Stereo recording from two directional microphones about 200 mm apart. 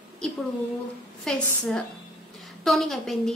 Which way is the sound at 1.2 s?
Centre (ahead or behind).